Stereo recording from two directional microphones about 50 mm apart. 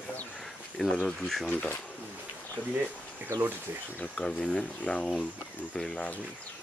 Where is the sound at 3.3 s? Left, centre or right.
Right.